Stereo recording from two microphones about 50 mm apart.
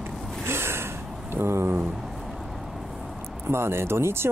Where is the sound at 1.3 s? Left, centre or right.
Right.